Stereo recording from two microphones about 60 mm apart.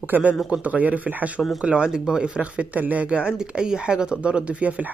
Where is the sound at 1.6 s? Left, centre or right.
Centre.